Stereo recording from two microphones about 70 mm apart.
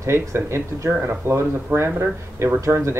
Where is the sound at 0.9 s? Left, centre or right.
Right.